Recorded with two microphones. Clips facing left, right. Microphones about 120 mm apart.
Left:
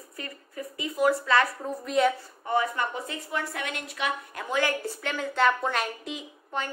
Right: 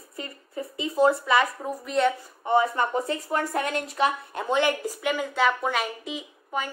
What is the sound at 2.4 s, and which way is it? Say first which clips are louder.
Speech: right 4 dB; 25° right (ahead or behind).